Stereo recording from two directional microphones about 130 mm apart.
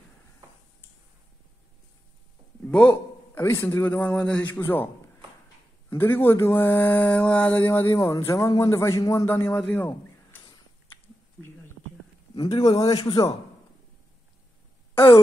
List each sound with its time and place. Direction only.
2.6 s a man's voice: 10° left (ahead or behind)
5.9 s speech: 15° left (ahead or behind)
12.8 s a man's voice: 30° left (ahead or behind)